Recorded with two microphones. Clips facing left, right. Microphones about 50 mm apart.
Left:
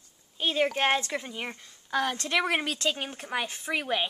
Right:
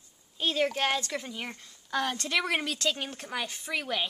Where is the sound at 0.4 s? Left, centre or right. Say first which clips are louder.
Left 2 dB; centre.